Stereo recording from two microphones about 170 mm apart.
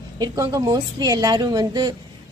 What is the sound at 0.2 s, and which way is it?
A woman's voice, 20° right (ahead or behind).